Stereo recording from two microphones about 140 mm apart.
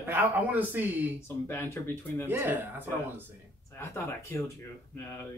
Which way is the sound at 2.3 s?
15° right (ahead or behind).